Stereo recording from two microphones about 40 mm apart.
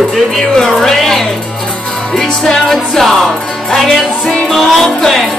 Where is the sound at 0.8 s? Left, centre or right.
Centre.